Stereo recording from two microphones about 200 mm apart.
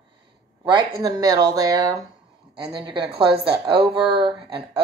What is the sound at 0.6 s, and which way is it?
Speech, 20° right (ahead or behind).